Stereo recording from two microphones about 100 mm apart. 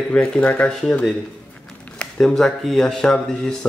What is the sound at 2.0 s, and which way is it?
Speech, 5° left (ahead or behind).